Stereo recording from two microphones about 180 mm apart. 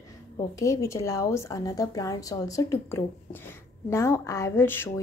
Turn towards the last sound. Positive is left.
turn(degrees=10)  # may be behind; listen again after turning